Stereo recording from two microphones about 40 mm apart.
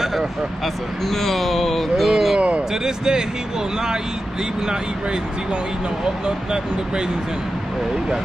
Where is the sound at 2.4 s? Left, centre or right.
Right.